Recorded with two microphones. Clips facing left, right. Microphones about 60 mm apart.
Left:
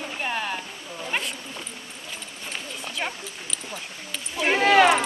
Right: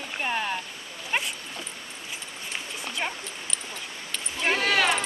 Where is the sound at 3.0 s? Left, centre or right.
Centre.